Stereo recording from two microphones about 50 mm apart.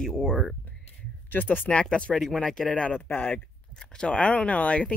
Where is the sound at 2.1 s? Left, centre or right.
Centre.